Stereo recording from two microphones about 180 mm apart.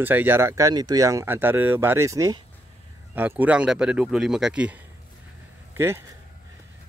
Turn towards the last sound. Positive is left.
turn(degrees=-15)  # may be behind; listen again after turning